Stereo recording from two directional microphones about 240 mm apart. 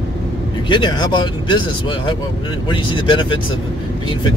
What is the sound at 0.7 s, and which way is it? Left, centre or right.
Speech, centre.